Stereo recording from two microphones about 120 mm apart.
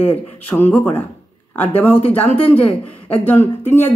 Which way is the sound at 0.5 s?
15° left (ahead or behind).